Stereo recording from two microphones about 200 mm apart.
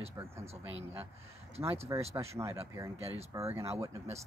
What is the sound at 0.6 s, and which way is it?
Speech, 70° right (ahead or behind).